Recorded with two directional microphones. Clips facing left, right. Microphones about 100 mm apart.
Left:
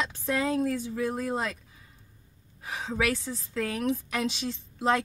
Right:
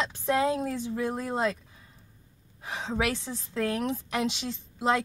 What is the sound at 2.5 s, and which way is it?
A woman's voice, 20° right (ahead or behind).